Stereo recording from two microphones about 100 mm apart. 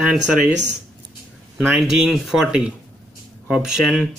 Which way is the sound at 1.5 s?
5° right (ahead or behind).